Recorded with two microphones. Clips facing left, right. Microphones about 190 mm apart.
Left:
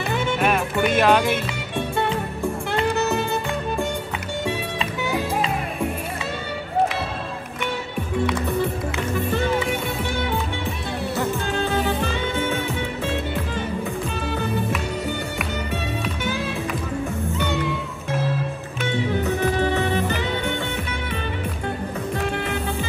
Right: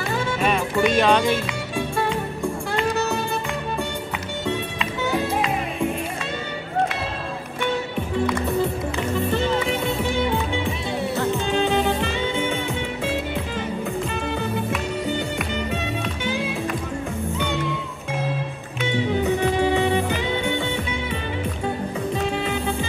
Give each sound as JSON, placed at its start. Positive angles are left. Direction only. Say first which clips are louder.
{"t": 0.8, "sound": "speech", "louder": "even", "side_deg": 5}
{"t": 11.5, "sound": "music", "louder": "right 3 dB", "side_deg": -20}
{"t": 19.2, "sound": "music", "louder": "right 2 dB", "side_deg": -15}